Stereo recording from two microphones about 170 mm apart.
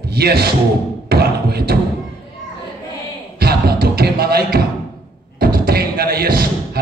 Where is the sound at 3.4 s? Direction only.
65° right (ahead or behind).